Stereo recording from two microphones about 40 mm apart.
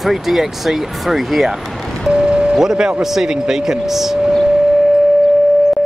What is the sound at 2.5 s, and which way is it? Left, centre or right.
Speech, centre.